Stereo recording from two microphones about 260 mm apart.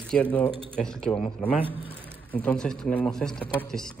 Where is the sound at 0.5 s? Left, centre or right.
Right.